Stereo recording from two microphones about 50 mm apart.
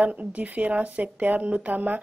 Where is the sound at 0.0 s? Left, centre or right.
Right.